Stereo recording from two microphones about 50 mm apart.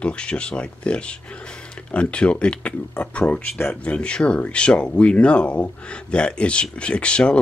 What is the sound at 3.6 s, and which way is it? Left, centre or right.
Speech, left.